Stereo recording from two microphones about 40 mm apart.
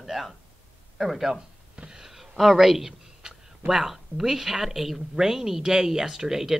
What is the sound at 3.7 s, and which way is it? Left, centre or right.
A woman's voice, centre.